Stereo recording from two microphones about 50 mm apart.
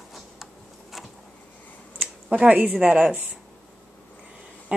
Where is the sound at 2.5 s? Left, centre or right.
Right.